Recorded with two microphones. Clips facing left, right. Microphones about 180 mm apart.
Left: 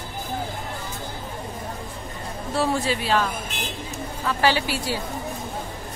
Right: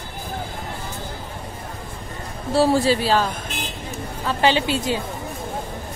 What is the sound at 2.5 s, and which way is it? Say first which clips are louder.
Speech: right 6 dB; 35° right (ahead or behind).